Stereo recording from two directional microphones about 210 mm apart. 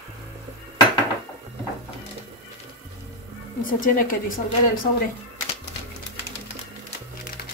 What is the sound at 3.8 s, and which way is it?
Speech, 40° left (ahead or behind).